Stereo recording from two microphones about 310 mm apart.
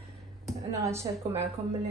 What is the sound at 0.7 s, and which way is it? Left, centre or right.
Speech, centre.